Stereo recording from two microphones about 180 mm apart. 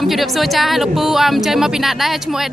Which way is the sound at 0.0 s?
Centre (ahead or behind).